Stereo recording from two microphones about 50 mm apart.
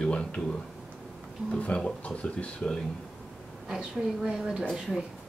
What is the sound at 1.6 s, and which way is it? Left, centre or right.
Speech, left.